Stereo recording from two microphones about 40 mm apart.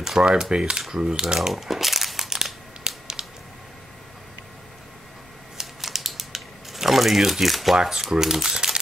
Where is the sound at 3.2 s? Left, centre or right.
Right.